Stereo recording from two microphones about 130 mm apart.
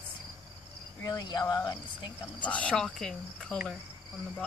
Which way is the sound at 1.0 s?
30° left (ahead or behind).